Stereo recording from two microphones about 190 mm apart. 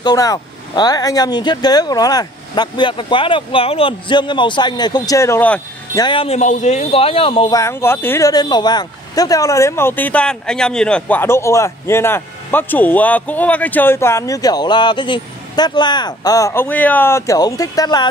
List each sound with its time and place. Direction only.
0.0 s speech: 20° left (ahead or behind)
5.9 s speech: 25° left (ahead or behind)